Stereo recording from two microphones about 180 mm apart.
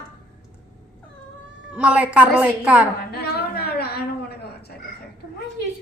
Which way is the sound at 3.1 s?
60° left (ahead or behind).